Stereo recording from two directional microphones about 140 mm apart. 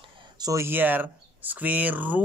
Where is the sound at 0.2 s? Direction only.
25° right (ahead or behind).